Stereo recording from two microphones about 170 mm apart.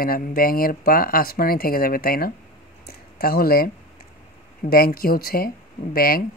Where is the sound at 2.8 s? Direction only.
60° left (ahead or behind).